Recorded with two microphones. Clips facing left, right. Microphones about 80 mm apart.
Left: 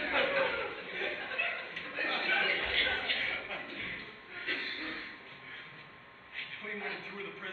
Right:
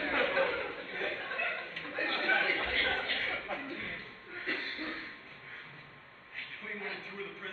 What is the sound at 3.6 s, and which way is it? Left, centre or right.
Music, centre.